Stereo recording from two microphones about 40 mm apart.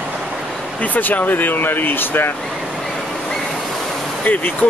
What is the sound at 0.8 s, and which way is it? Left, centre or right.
Speech, left.